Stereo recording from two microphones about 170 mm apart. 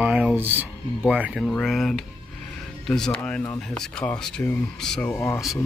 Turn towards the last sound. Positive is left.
turn(degrees=15)  # may be behind; listen again after turning